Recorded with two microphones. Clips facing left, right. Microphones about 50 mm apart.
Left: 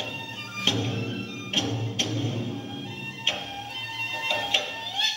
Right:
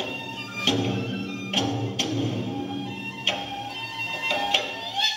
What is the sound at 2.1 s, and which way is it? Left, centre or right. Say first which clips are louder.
Music: right 3 dB; right.